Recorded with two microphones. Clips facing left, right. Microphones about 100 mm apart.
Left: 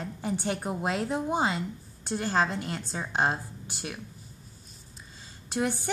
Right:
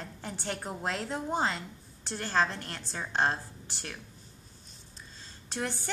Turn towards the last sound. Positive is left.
turn(degrees=10)  # may be behind; listen again after turning